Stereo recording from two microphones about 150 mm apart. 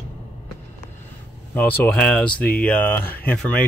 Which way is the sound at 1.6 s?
15° left (ahead or behind).